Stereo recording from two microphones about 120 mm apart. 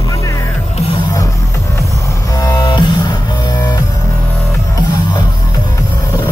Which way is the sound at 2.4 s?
35° left (ahead or behind).